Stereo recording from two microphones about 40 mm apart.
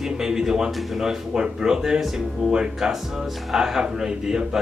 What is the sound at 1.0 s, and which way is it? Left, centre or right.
Speech, centre.